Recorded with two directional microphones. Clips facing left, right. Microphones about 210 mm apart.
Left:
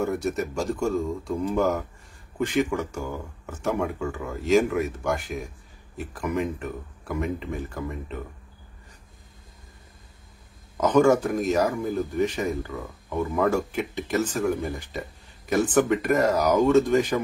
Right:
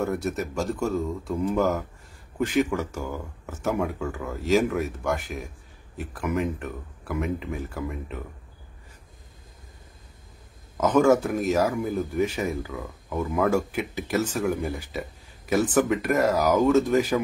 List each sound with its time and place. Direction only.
0.0 s speech: centre (ahead or behind)
10.8 s speech: centre (ahead or behind)